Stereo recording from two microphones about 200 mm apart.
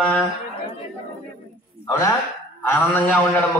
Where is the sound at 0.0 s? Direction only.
5° left (ahead or behind).